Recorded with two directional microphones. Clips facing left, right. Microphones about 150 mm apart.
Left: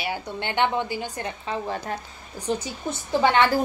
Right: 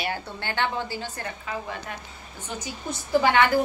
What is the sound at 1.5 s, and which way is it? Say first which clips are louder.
A woman's voice: left 6 dB; 35° left (ahead or behind).